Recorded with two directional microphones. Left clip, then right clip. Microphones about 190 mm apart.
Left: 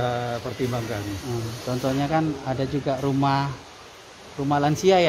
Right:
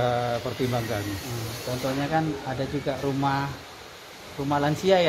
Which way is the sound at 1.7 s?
65° left (ahead or behind).